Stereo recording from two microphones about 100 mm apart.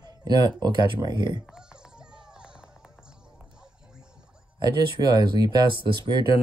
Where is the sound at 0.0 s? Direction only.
40° right (ahead or behind).